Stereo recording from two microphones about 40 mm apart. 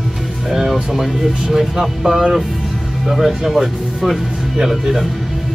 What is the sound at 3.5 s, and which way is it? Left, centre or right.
Speech, centre.